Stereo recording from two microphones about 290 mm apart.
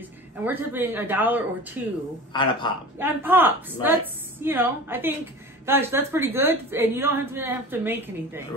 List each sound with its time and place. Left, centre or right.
0.4 s a woman's voice: centre
2.3 s speech: centre
3.0 s a woman's voice: centre